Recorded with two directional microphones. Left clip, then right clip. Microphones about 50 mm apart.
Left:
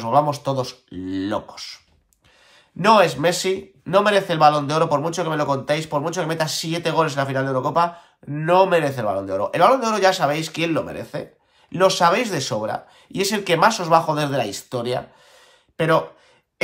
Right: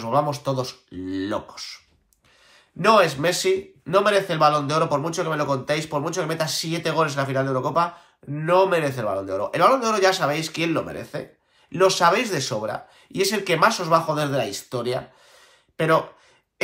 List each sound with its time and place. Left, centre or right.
0.0 s a man's voice: left
2.8 s a man's voice: left